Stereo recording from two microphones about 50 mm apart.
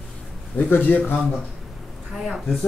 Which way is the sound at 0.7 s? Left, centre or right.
Left.